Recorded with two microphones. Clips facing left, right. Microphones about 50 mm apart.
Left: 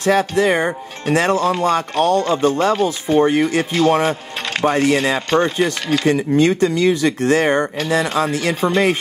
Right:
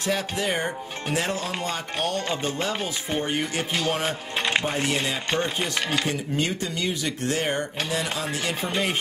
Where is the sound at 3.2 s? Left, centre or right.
Left.